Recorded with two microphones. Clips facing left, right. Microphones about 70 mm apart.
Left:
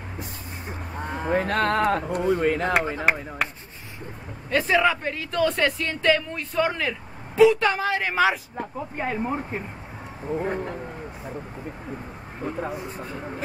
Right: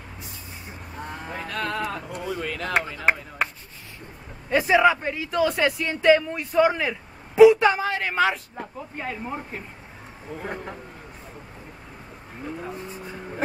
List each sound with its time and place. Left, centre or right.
1.0 s cattle: left
1.3 s cattle: left
2.1 s speech: left
4.5 s speech: centre
8.7 s speech: left
10.5 s speech: centre